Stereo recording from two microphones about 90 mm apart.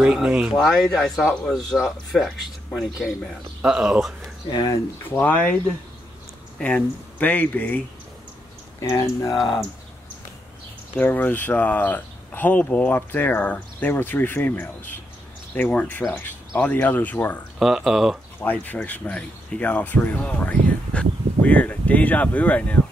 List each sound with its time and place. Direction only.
0.0 s speech: 10° right (ahead or behind); by 1.6 s 5° left (ahead or behind)
1.8 s speech: 5° right (ahead or behind)
4.5 s speech: 55° left (ahead or behind)
5.2 s speech: 15° left (ahead or behind)
6.6 s speech: 20° left (ahead or behind)
8.8 s speech: 35° left (ahead or behind)
11.0 s speech: 20° left (ahead or behind)
17.6 s speech: 5° right (ahead or behind)
18.4 s speech: 20° left (ahead or behind)